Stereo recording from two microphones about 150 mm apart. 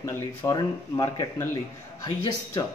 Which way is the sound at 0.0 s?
20° left (ahead or behind).